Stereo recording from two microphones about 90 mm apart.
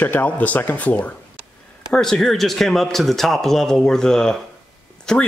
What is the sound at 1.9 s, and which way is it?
A man's voice, 5° left (ahead or behind).